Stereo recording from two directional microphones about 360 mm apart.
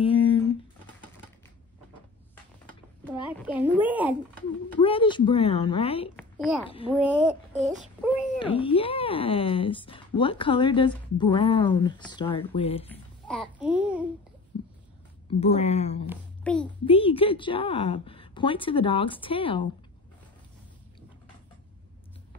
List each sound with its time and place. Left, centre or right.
0.0 s a sound: centre
3.3 s a woman's voice: centre
4.7 s speech: centre
6.1 s a woman's voice: centre
8.5 s speech: centre
12.9 s a child's voice: centre
15.2 s speech: centre
16.1 s a child's voice: centre
16.8 s speech: centre